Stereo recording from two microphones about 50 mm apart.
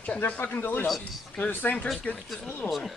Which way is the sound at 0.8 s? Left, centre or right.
Centre.